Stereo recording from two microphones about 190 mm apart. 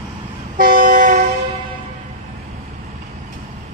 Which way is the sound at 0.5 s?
50° right (ahead or behind).